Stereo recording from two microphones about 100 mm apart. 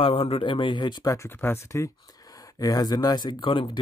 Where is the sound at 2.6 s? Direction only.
40° left (ahead or behind); by 3.8 s 60° left (ahead or behind).